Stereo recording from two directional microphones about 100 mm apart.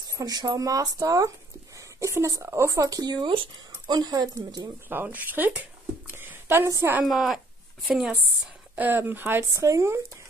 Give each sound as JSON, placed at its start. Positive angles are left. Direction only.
{"t": 0.2, "sound": "speech", "side_deg": -40}
{"t": 4.8, "sound": "a woman's voice", "side_deg": -20}
{"t": 7.1, "sound": "a woman's voice", "side_deg": 0}
{"t": 8.7, "sound": "speech", "side_deg": -20}
{"t": 9.5, "sound": "speech", "side_deg": -30}